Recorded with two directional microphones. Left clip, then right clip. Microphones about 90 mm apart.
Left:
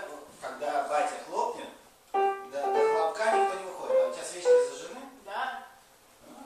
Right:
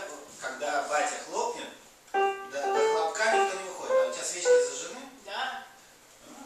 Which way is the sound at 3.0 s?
15° right (ahead or behind).